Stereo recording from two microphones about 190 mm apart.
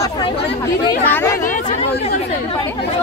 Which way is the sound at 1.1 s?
10° left (ahead or behind).